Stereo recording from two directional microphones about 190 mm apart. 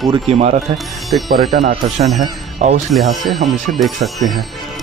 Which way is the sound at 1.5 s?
40° right (ahead or behind).